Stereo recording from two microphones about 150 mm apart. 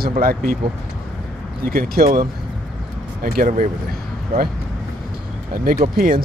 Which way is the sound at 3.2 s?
75° right (ahead or behind).